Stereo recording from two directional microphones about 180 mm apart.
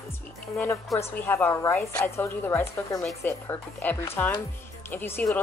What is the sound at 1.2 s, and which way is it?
A woman's voice, 10° left (ahead or behind).